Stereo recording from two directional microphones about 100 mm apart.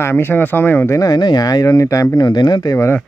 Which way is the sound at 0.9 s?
45° left (ahead or behind).